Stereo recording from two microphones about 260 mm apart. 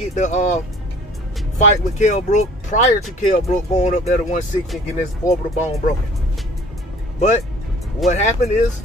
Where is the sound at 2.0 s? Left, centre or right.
Left.